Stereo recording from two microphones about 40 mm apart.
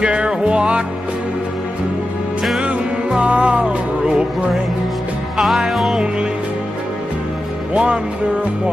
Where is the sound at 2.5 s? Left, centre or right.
Right.